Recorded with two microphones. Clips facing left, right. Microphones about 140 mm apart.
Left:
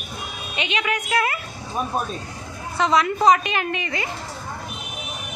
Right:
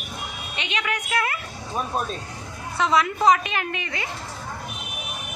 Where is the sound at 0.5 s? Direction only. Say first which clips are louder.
Left 4 dB; 5° left (ahead or behind).